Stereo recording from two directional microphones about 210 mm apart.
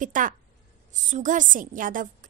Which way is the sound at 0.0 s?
40° right (ahead or behind).